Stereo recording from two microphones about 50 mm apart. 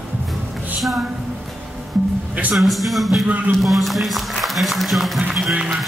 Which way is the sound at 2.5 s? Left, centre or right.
Centre.